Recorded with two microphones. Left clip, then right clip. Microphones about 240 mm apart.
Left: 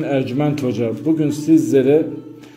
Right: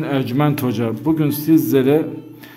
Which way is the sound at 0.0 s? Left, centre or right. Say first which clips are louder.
Even; right.